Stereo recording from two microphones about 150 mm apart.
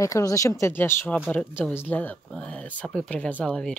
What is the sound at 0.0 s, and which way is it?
Speech, 20° left (ahead or behind).